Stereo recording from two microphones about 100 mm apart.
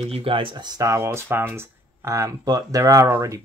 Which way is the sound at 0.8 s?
30° right (ahead or behind).